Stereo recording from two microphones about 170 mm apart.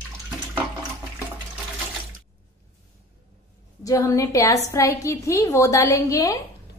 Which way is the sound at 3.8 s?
20° left (ahead or behind).